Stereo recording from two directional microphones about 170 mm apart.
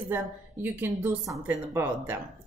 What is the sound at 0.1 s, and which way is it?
Speech, 10° right (ahead or behind).